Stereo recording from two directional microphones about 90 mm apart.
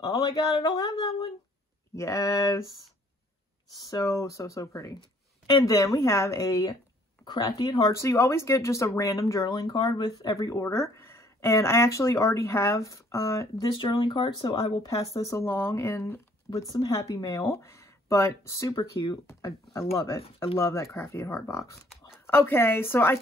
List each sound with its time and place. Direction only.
0.0 s speech: 45° left (ahead or behind)
2.0 s speech: 35° left (ahead or behind)
3.8 s speech: 35° left (ahead or behind)
7.9 s speech: 30° left (ahead or behind)
13.7 s speech: 60° left (ahead or behind)
14.9 s speech: 40° left (ahead or behind)
16.5 s speech: 45° left (ahead or behind)
18.7 s speech: 65° left (ahead or behind)
19.7 s a woman's voice: 35° left (ahead or behind)